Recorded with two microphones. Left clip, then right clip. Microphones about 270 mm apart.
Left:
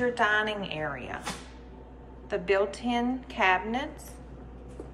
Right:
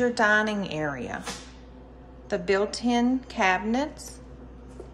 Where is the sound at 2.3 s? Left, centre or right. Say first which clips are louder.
Right 1 dB; centre.